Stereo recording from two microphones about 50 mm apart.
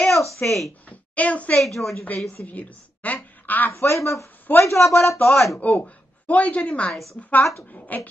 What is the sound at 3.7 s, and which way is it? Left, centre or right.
Speech, left.